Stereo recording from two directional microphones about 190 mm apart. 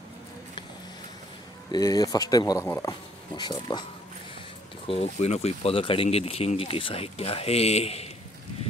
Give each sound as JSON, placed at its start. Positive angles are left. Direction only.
{"t": 1.7, "sound": "speech", "side_deg": 20}
{"t": 4.8, "sound": "speech", "side_deg": 35}